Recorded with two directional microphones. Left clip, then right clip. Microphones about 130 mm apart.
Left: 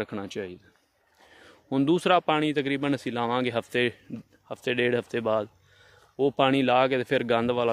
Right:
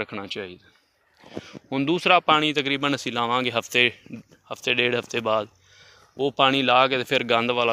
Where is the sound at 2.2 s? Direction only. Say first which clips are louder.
Right 5 dB; 25° left (ahead or behind).